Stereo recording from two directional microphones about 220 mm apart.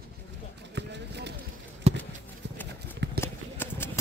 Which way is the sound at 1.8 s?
30° right (ahead or behind).